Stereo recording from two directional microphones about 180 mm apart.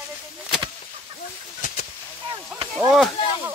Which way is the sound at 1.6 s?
45° left (ahead or behind).